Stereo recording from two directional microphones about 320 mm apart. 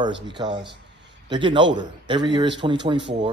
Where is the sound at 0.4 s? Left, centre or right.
Centre.